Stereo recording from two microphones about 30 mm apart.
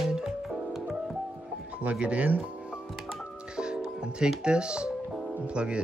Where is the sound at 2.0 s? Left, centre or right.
Right.